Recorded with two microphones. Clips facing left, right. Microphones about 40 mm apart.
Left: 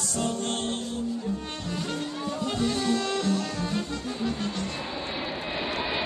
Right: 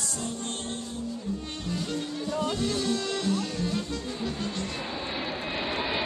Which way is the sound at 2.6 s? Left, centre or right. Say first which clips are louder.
Left 2 dB; centre.